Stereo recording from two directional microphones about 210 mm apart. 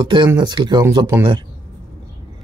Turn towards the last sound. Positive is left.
turn(degrees=-15)  # may be behind; listen again after turning